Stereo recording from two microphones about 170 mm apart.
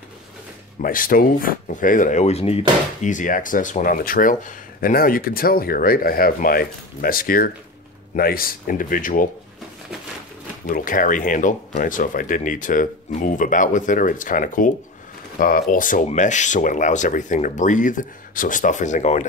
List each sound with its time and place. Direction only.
0.7 s speech: 55° left (ahead or behind); by 2.6 s 40° left (ahead or behind)
3.0 s speech: 50° left (ahead or behind)
10.7 s speech: 55° left (ahead or behind)